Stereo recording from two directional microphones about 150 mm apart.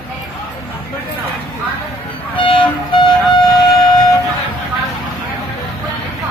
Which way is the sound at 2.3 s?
35° left (ahead or behind).